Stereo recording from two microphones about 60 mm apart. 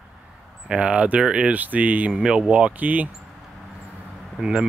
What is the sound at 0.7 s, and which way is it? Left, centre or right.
Speech, centre.